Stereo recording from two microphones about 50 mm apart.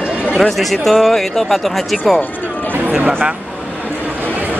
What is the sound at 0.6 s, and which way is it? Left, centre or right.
Speech, centre.